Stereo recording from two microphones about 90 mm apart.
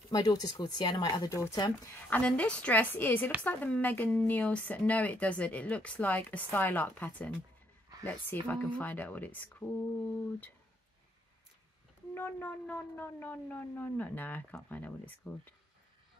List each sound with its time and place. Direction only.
0.1 s speech: 45° left (ahead or behind)
1.3 s speech: 35° left (ahead or behind)
2.0 s a woman's voice: 15° left (ahead or behind)
12.1 s speech: 25° left (ahead or behind)